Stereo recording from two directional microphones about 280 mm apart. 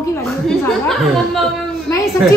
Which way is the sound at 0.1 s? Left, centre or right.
Centre.